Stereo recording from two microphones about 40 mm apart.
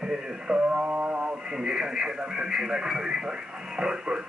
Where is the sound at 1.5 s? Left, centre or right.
Centre.